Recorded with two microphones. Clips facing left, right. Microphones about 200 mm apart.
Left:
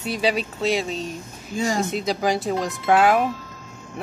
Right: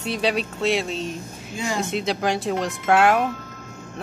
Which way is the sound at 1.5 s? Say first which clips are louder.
Left 3 dB; 45° left (ahead or behind).